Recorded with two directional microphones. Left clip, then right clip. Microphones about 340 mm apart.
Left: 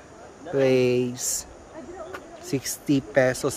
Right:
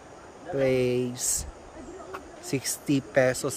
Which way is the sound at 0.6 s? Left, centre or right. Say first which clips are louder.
Left 4 dB; centre.